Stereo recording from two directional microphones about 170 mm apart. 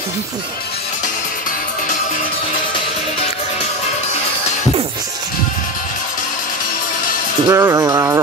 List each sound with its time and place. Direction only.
7.4 s speech: 15° right (ahead or behind)